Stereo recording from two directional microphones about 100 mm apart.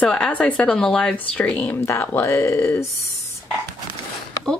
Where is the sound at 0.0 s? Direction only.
10° left (ahead or behind).